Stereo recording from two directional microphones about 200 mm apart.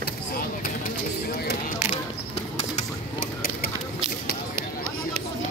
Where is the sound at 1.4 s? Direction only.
40° left (ahead or behind).